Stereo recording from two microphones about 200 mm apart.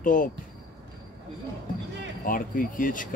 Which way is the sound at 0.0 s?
40° left (ahead or behind).